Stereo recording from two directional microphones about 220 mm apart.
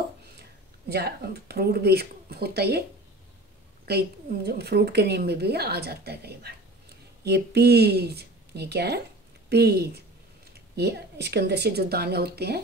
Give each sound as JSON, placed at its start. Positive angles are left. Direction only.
{"t": 0.8, "sound": "a woman's voice", "side_deg": -45}
{"t": 3.8, "sound": "a woman's voice", "side_deg": -45}